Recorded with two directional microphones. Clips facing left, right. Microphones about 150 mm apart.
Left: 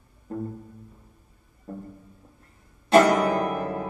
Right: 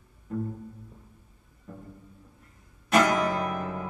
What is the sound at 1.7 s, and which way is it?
Music, 35° left (ahead or behind).